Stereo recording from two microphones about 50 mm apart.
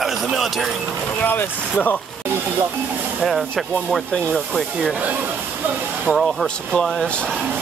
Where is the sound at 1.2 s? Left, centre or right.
Left.